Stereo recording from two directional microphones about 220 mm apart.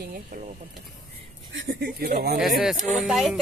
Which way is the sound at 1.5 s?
50° right (ahead or behind).